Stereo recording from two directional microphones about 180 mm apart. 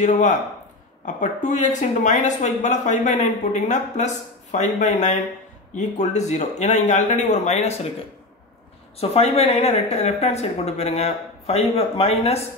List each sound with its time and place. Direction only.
0.0 s speech: 40° left (ahead or behind)
9.0 s speech: 35° left (ahead or behind)